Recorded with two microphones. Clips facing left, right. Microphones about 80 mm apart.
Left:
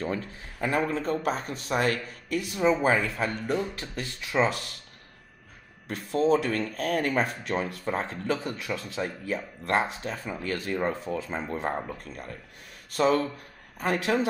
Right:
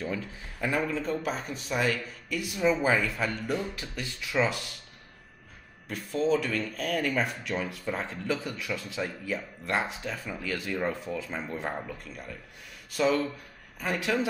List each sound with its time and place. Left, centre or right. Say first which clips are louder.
0.0 s speech: left 2 dB; left
5.9 s speech: left 3 dB; left
10.4 s speech: left 2 dB; left
12.0 s speech: left 2 dB; left